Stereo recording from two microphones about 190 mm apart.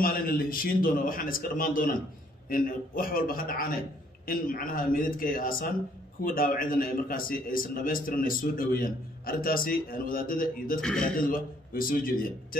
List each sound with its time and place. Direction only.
0.0 s a man's voice: 50° left (ahead or behind)
10.8 s speech: 5° left (ahead or behind)
11.1 s a man's voice: 50° left (ahead or behind)